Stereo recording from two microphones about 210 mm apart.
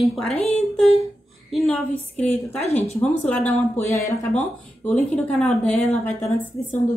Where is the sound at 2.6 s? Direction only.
30° left (ahead or behind).